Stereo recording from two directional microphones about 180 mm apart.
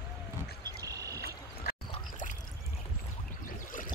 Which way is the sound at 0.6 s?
20° right (ahead or behind).